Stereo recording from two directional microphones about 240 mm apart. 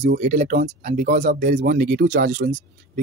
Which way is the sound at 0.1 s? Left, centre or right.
Right.